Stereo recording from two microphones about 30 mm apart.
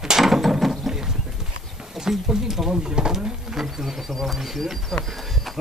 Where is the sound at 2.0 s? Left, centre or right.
Centre.